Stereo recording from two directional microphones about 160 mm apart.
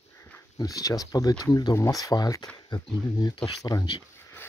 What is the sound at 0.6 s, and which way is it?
Speech, 20° left (ahead or behind).